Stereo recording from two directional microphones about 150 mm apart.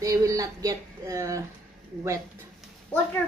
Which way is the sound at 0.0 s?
20° right (ahead or behind).